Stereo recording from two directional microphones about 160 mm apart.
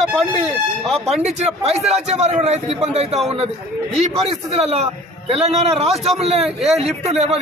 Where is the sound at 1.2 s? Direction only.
45° right (ahead or behind).